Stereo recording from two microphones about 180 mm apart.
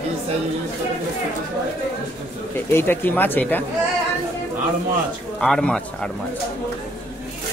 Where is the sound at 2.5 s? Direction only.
10° left (ahead or behind).